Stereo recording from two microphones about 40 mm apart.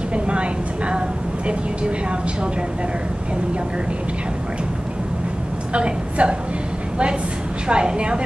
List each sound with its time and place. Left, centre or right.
0.1 s a woman's voice: right
5.7 s a woman's voice: right
7.6 s a woman's voice: right